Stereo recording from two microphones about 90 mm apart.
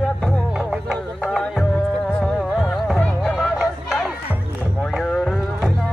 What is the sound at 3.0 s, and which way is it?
Music, 10° left (ahead or behind).